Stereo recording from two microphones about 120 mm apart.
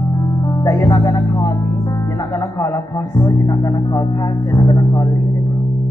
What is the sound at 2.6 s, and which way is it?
Speech, 25° left (ahead or behind).